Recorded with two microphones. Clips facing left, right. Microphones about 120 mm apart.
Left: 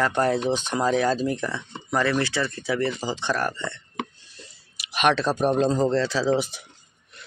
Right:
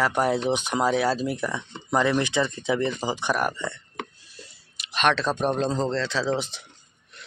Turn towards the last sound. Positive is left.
turn(degrees=10)  # may be behind; listen again after turning